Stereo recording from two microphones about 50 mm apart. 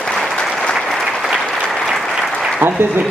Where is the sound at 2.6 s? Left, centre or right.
Right.